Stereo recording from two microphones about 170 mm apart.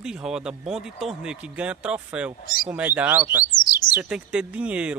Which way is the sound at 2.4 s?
25° left (ahead or behind).